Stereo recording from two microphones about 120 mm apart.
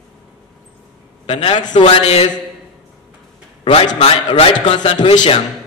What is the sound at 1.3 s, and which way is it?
Mantra, 50° left (ahead or behind).